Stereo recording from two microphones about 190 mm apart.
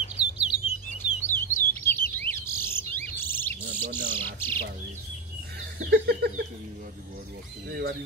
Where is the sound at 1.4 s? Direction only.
10° left (ahead or behind).